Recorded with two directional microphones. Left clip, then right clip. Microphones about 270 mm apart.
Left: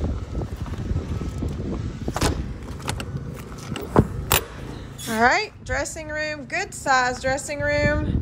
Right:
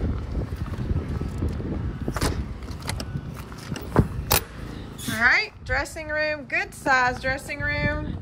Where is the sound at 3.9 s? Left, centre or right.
Centre.